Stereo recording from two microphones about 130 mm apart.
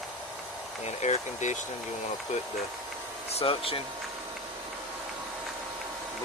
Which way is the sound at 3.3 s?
50° left (ahead or behind).